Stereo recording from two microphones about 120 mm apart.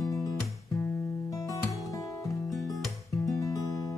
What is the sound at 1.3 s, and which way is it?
Music, 30° left (ahead or behind).